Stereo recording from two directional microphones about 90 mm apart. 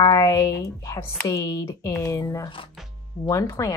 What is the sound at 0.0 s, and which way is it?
Speech, 45° left (ahead or behind).